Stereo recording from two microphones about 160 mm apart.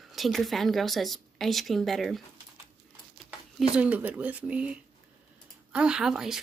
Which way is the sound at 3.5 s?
10° right (ahead or behind).